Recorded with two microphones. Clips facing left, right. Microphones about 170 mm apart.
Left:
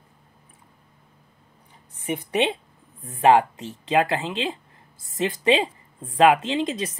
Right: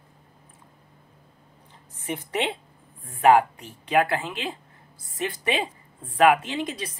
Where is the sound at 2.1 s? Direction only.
20° left (ahead or behind).